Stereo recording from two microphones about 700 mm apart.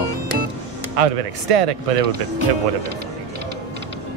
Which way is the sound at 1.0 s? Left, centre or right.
Right.